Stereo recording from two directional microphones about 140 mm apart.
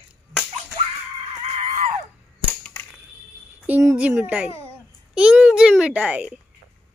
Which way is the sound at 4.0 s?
10° right (ahead or behind).